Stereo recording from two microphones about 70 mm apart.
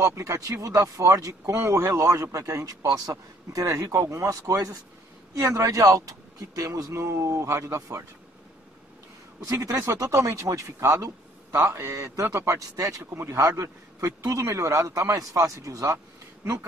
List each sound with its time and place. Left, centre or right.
0.0 s a man's voice: right
1.6 s a man's voice: right
3.1 s a man's voice: right
9.4 s a man's voice: right
11.0 s a sound: right
11.6 s a man's voice: right
13.1 s speech: right
13.4 s a man's voice: right